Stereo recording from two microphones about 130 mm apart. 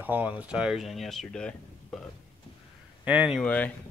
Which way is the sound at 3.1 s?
10° right (ahead or behind).